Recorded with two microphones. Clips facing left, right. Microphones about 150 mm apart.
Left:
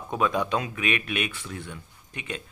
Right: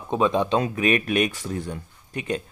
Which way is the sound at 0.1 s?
25° right (ahead or behind).